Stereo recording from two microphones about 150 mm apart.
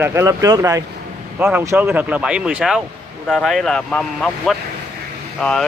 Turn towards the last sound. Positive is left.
turn(degrees=5)  # may be behind; listen again after turning